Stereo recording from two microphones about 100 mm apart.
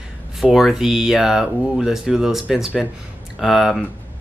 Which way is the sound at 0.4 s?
Centre (ahead or behind).